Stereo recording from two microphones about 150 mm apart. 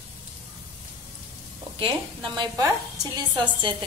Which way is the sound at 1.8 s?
30° right (ahead or behind).